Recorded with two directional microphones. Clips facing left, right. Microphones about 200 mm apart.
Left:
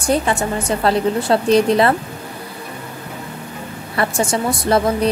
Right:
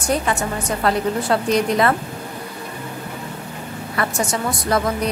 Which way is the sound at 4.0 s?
30° left (ahead or behind).